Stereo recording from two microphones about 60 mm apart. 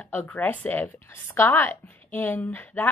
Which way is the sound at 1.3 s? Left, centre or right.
Left.